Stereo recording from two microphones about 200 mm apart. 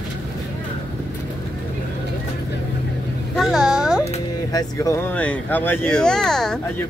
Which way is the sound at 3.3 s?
Centre (ahead or behind).